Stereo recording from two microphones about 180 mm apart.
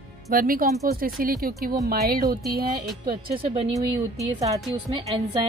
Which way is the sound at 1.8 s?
55° right (ahead or behind).